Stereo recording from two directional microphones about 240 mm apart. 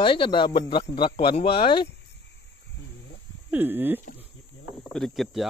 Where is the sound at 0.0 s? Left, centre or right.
Left.